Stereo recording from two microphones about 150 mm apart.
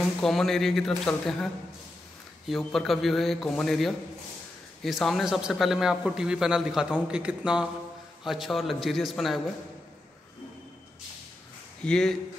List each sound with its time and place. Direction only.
0.0 s a man's voice: centre (ahead or behind)
11.8 s a man's voice: 5° left (ahead or behind)